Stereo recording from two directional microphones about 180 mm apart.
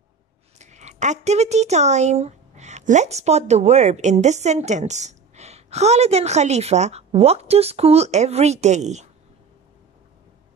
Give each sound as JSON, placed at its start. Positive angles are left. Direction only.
{"t": 0.6, "sound": "speech", "side_deg": -40}